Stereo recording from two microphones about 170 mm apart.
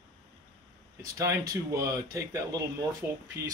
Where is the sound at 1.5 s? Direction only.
20° right (ahead or behind).